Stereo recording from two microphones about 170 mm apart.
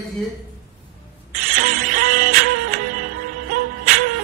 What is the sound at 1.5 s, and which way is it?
Music, 55° right (ahead or behind).